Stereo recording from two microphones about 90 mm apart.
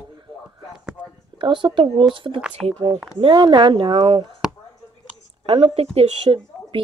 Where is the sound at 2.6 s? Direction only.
Centre (ahead or behind).